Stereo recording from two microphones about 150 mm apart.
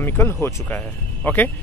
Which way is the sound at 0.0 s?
15° left (ahead or behind).